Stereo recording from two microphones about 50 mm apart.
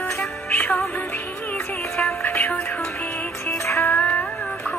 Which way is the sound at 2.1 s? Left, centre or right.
Left.